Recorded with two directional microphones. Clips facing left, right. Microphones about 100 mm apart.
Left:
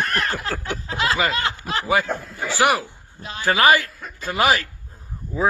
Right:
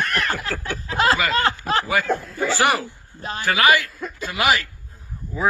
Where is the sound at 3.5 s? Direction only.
35° left (ahead or behind).